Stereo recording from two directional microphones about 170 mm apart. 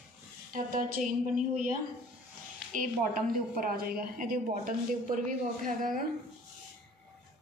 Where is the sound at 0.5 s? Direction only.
55° right (ahead or behind).